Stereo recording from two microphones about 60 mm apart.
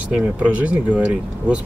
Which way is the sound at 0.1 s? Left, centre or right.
Right.